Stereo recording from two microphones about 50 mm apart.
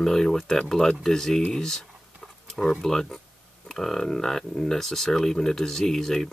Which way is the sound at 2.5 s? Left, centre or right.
Centre.